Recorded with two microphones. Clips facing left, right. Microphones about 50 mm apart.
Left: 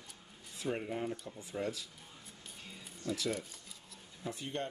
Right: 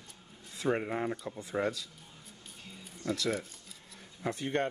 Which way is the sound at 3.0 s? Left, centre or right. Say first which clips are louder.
Right 4 dB; right.